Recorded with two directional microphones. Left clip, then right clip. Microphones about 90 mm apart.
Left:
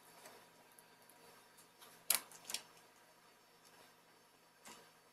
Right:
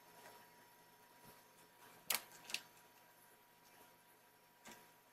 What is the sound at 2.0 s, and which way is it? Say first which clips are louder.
Typewriter: left 1 dB; 5° left (ahead or behind).